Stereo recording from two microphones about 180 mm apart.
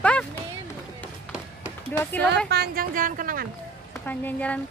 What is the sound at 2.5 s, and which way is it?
Speech, 55° right (ahead or behind).